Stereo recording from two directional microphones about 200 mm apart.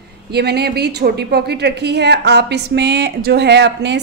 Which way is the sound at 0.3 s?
55° right (ahead or behind).